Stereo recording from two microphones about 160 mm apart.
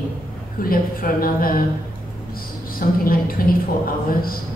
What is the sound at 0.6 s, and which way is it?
A woman's voice, 65° left (ahead or behind).